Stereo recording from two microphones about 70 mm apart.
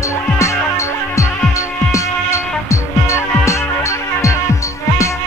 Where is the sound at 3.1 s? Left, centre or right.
Left.